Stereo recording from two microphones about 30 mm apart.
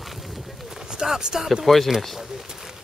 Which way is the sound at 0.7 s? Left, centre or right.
Right.